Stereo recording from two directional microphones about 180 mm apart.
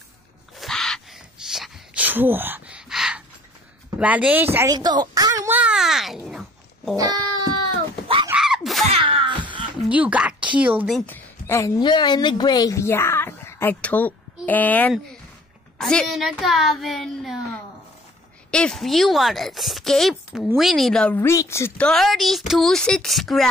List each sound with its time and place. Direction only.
0.6 s a sound: centre (ahead or behind)
4.0 s speech: 10° right (ahead or behind)
4.7 s a sound: 25° right (ahead or behind)
5.6 s babbling: 5° right (ahead or behind)
8.4 s screaming: centre (ahead or behind)
8.8 s music: 35° right (ahead or behind)
9.8 s speech: 5° right (ahead or behind)
11.0 s a woman's voice: 10° left (ahead or behind)
11.8 s speech: 25° left (ahead or behind); by 17.4 s centre (ahead or behind)
18.5 s speech: 5° left (ahead or behind)